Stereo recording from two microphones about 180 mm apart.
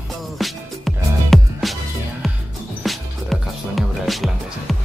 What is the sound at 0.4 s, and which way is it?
Music, centre (ahead or behind).